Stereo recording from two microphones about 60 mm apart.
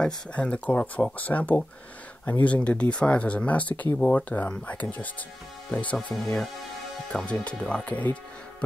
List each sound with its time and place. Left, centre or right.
0.0 s speech: centre
7.1 s speech: centre